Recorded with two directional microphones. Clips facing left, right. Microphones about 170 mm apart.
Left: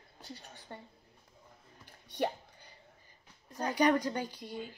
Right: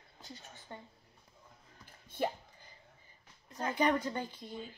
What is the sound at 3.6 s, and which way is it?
Speech, 40° left (ahead or behind).